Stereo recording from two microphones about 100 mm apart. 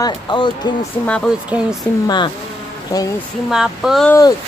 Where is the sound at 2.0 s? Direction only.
50° left (ahead or behind).